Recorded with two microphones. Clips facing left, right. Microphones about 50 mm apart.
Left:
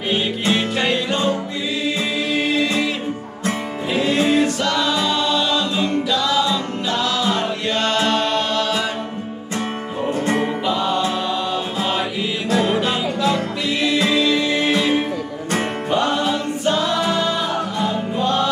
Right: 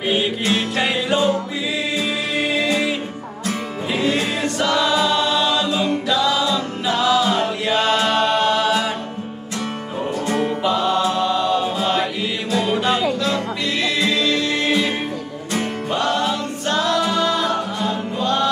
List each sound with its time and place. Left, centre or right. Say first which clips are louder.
0.6 s music: left 1 dB; centre
2.3 s music: even; centre
3.9 s music: even; centre
4.4 s choir: left 1 dB; centre
10.1 s music: left 1 dB; left
10.6 s chant: right 1 dB; centre
13.2 s music: left 2 dB; centre
15.9 s singing: left 1 dB; centre
18.2 s music: even; centre